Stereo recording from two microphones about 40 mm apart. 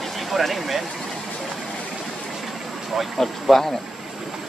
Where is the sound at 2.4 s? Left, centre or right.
Centre.